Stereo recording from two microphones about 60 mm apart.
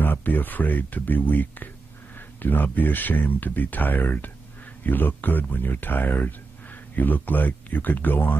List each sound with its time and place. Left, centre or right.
0.0 s speech: left